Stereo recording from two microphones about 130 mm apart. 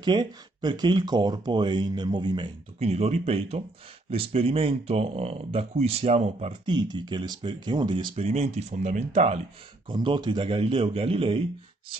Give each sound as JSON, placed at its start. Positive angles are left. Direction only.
{"t": 0.0, "sound": "speech", "side_deg": -35}
{"t": 2.9, "sound": "speech", "side_deg": -50}
{"t": 6.6, "sound": "speech", "side_deg": -35}
{"t": 8.3, "sound": "speech", "side_deg": -55}
{"t": 9.8, "sound": "speech", "side_deg": -40}